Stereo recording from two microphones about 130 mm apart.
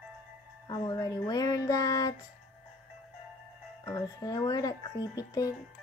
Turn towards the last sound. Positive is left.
turn(degrees=30)  # may be behind; listen again after turning